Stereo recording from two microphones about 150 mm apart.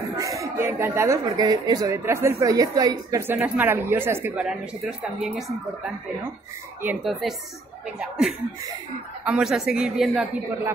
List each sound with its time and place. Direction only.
0.1 s a woman's voice: 20° right (ahead or behind)
4.5 s speech: centre (ahead or behind)
6.8 s speech: 10° right (ahead or behind)
7.1 s speech: centre (ahead or behind)